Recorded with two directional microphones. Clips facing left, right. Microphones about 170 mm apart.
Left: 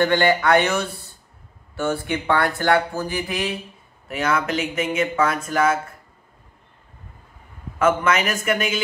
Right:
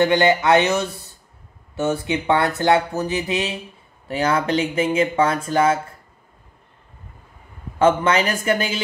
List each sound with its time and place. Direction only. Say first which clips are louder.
0.0 s speech: right 2 dB; 20° right (ahead or behind)
7.8 s speech: right 2 dB; 30° right (ahead or behind)